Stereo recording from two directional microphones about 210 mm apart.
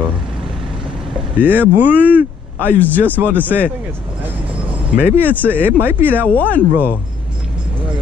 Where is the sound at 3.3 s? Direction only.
10° left (ahead or behind).